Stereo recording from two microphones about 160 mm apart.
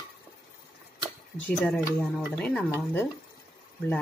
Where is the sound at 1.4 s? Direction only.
5° left (ahead or behind).